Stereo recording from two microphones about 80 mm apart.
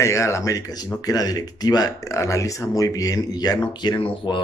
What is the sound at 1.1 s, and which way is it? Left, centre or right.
Speech, left.